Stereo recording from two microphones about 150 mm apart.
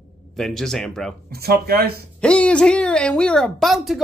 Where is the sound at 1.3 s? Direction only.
90° right.